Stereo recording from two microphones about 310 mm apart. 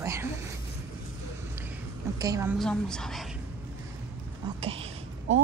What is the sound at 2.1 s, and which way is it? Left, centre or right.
Speech, centre.